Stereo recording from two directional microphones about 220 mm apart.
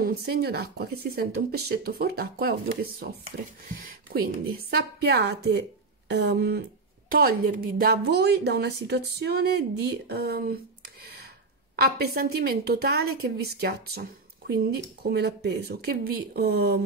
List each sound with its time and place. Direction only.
0.0 s a woman's voice: 45° right (ahead or behind)
11.7 s a woman's voice: 45° right (ahead or behind)
15.0 s a woman's voice: 50° right (ahead or behind)